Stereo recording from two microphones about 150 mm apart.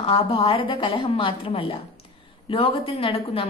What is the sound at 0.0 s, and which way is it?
A woman's voice, 40° left (ahead or behind).